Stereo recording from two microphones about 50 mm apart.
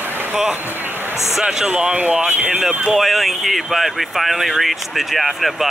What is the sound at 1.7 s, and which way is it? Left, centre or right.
Speech, right.